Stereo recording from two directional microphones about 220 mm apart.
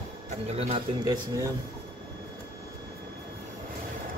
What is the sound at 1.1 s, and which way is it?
Speech, 15° right (ahead or behind).